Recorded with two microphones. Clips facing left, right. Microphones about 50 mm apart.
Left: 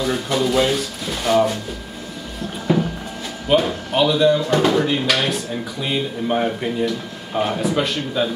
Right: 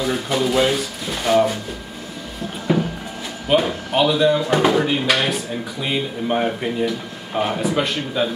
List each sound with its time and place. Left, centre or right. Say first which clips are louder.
0.0 s speech: even; centre
2.7 s a sound: left 1 dB; centre
3.4 s speech: left 1 dB; centre